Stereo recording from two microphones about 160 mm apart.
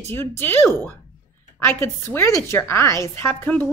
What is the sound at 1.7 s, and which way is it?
A woman's voice, 15° left (ahead or behind).